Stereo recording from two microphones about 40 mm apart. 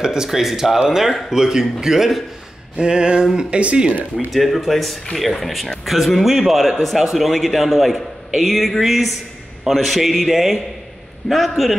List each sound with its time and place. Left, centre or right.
0.0 s speech: centre
2.8 s a sound: right
4.3 s a man's voice: centre